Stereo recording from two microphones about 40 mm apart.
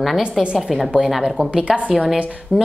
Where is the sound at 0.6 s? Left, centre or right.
Centre.